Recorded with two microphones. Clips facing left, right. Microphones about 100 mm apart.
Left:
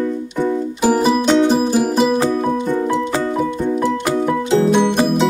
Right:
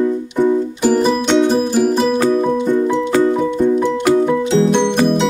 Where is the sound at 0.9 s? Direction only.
10° left (ahead or behind).